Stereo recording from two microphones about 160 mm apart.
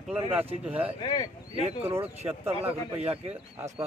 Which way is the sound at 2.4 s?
40° right (ahead or behind).